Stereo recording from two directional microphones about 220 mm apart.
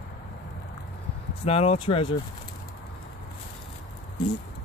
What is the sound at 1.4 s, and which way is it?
Speech, 30° left (ahead or behind).